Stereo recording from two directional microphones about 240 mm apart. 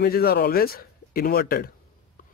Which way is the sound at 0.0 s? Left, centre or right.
Left.